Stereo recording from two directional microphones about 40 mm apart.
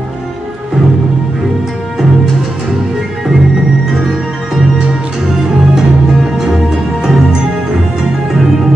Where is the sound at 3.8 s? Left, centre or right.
Centre.